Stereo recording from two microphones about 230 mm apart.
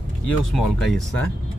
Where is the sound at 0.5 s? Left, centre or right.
Centre.